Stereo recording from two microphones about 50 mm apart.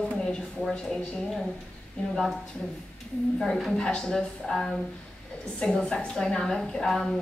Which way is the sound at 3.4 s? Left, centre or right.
Centre.